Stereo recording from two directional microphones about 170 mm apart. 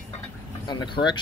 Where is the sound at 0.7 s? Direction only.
25° left (ahead or behind).